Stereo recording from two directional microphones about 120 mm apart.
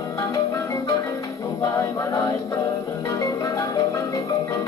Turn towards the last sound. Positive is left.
turn(degrees=30)  # may be behind; listen again after turning